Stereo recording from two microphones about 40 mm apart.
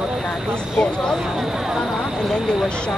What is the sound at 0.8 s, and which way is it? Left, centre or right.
Speech, centre.